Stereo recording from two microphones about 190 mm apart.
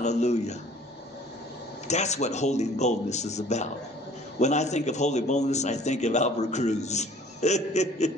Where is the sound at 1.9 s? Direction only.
35° left (ahead or behind).